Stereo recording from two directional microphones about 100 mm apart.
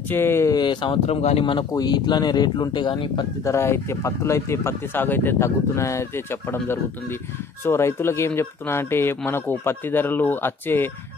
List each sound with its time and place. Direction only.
0.1 s speech: 25° left (ahead or behind)
0.5 s speech: 50° left (ahead or behind)
1.0 s speech: 90° left
1.4 s speech: 55° left (ahead or behind)
1.7 s speech: 45° left (ahead or behind)
3.4 s speech: 25° left (ahead or behind)